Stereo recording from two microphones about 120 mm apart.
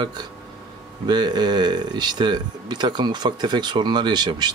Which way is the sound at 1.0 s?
35° right (ahead or behind).